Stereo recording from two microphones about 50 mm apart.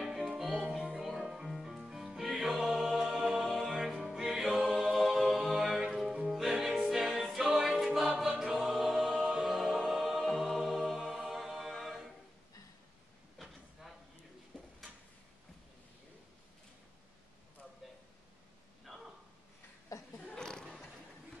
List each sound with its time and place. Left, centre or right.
0.3 s music: centre
4.5 s a capella: centre
5.9 s music: centre
8.2 s choir: centre
9.2 s music: centre
9.5 s music: centre
13.4 s a sound: centre
18.9 s a sound: centre
20.3 s a sound: centre